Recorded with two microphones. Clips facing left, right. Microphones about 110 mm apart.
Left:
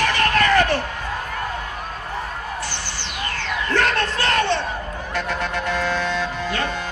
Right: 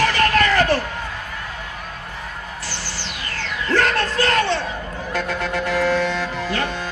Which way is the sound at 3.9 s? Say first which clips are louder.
Right 2 dB; 20° left (ahead or behind).